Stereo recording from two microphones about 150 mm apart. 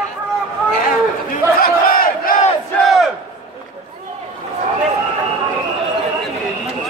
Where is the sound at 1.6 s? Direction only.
80° left.